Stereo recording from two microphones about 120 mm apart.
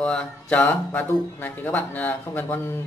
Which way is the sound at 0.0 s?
5° left (ahead or behind).